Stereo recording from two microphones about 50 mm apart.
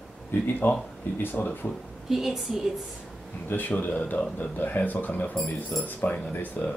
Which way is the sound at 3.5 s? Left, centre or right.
Left.